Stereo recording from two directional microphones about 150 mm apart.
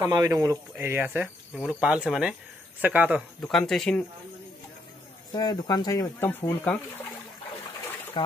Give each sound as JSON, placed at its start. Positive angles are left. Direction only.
{"t": 0.1, "sound": "speech", "side_deg": -25}
{"t": 0.7, "sound": "speech", "side_deg": -10}
{"t": 3.3, "sound": "speech", "side_deg": 5}
{"t": 5.3, "sound": "speech", "side_deg": 25}